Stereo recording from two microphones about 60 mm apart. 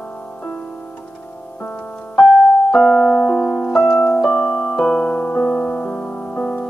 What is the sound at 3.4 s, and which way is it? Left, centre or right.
Keyboard, centre.